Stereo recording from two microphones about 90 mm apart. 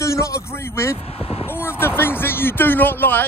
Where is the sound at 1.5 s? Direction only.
25° left (ahead or behind).